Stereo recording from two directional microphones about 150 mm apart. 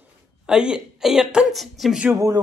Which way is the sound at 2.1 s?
20° right (ahead or behind).